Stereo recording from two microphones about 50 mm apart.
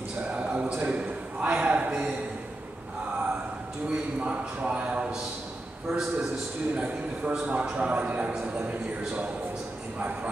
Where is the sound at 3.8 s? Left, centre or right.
Right.